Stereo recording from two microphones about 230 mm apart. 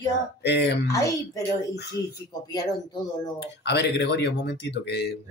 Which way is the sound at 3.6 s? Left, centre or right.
Left.